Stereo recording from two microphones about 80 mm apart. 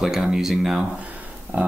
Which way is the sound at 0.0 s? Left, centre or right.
Centre.